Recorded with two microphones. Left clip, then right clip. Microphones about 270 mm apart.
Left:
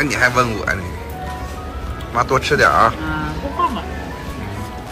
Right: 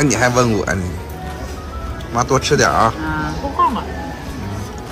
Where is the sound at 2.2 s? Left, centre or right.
Centre.